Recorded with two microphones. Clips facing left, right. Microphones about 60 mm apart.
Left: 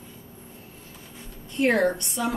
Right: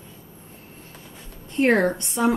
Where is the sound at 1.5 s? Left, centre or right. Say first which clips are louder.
Right 2 dB; right.